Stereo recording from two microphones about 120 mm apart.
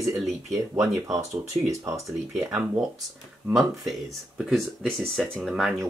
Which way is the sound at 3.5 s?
Centre (ahead or behind).